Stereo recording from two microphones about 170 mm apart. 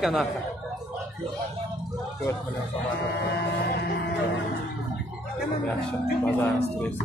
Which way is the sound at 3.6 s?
65° left (ahead or behind).